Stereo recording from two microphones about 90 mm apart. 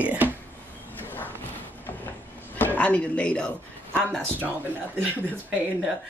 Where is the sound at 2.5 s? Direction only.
20° left (ahead or behind).